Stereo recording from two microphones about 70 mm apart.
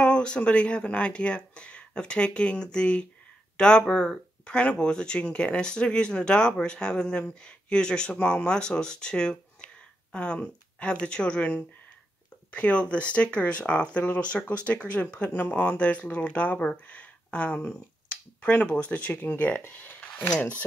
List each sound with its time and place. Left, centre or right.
0.0 s speech: centre
19.6 s a sound: left
20.3 s speech: left